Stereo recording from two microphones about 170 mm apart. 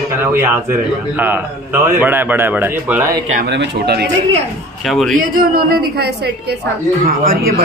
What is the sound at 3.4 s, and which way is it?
Speech, 85° right.